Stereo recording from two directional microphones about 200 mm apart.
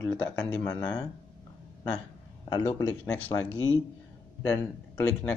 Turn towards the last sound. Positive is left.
turn(degrees=10)  # may be behind; listen again after turning